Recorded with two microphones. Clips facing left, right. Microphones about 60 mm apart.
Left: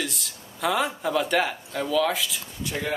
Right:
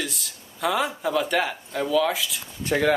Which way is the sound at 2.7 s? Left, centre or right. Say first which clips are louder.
Right 8 dB; right.